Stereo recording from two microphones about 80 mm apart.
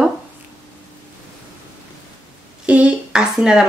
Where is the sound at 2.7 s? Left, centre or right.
Centre.